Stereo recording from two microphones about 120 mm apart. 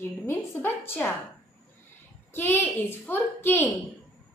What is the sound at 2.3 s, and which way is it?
A woman's voice, 20° left (ahead or behind).